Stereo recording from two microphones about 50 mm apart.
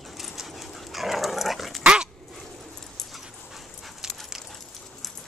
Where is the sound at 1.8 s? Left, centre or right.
Centre.